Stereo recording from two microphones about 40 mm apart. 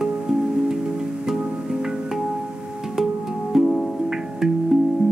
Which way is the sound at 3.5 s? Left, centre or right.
Centre.